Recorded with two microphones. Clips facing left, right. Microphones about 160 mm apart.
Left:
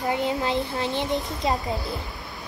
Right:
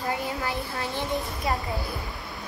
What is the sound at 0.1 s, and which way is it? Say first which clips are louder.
A child's voice: left 7 dB; 20° left (ahead or behind).